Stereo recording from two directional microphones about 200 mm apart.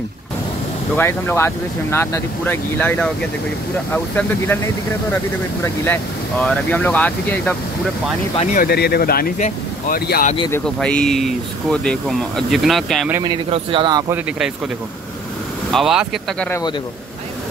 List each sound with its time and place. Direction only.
0.9 s speech: 10° left (ahead or behind)
8.4 s speech: 40° left (ahead or behind)
10.5 s speech: 5° left (ahead or behind)
13.1 s speech: 20° right (ahead or behind)
15.7 s speech: centre (ahead or behind)